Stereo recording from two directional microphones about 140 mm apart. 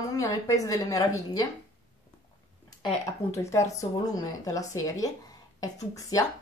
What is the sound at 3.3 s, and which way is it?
A woman's voice, 20° left (ahead or behind).